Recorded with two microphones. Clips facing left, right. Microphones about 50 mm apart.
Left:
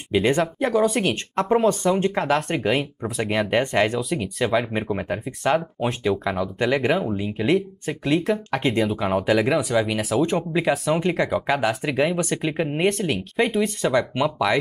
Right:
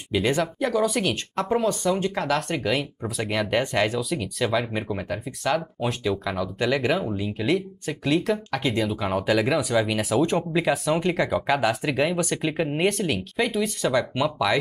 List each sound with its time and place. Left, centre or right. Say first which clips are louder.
0.1 s speech: left 3 dB; left
8.8 s speech: left 3 dB; centre
11.5 s speech: right 1 dB; centre
13.1 s speech: left 3 dB; left